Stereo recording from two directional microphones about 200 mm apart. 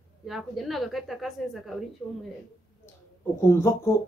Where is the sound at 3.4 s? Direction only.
15° left (ahead or behind).